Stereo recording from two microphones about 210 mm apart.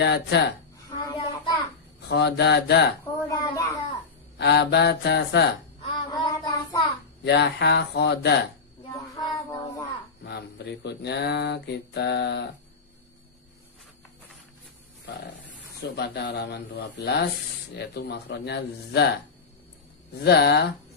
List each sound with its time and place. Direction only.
0.0 s speech: 55° left (ahead or behind)
1.1 s child singing: 25° left (ahead or behind)
2.0 s speech: 50° left (ahead or behind)
3.2 s a sound: 15° left (ahead or behind)
4.4 s speech: 50° left (ahead or behind)
6.0 s child singing: 20° left (ahead or behind)
7.2 s speech: 55° left (ahead or behind)
9.1 s child singing: 15° left (ahead or behind)
10.2 s speech: 50° left (ahead or behind)
15.8 s speech: 50° left (ahead or behind)
20.2 s speech: 50° left (ahead or behind)